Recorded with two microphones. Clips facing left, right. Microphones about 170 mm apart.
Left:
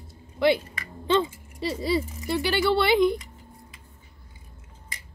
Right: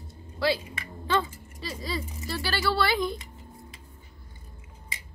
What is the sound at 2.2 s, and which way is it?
Speech, 20° left (ahead or behind).